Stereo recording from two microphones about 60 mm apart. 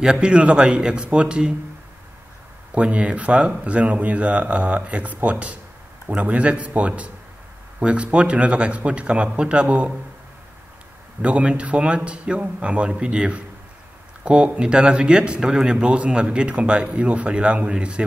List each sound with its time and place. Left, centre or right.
0.0 s a man's voice: centre
2.7 s speech: right
11.2 s a man's voice: centre